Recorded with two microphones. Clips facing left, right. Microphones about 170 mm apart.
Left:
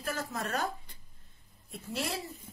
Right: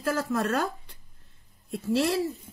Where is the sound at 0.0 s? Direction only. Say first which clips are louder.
Right 9 dB; 80° right.